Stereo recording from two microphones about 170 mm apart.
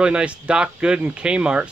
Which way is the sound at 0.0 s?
5° right (ahead or behind).